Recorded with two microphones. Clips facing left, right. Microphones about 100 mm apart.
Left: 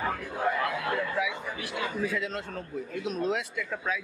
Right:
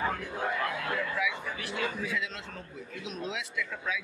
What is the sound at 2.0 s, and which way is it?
Speech, 45° left (ahead or behind).